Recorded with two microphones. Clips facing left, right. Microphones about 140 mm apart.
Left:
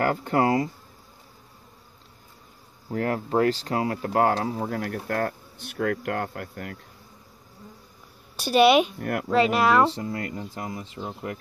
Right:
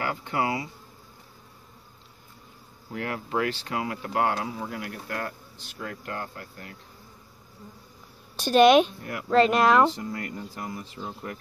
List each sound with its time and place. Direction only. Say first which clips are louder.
0.0 s speech: left 6 dB; 45° left (ahead or behind)
2.9 s speech: left 5 dB; 40° left (ahead or behind); by 6.8 s 60° left (ahead or behind)
8.4 s speech: right 1 dB; 10° left (ahead or behind)
9.9 s speech: left 3 dB; 30° left (ahead or behind)